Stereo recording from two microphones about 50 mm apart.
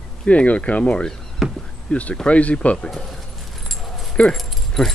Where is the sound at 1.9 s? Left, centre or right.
Left.